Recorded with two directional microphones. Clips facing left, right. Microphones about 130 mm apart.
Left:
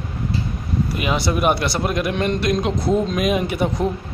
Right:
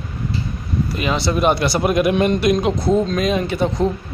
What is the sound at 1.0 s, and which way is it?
Speech, 10° left (ahead or behind).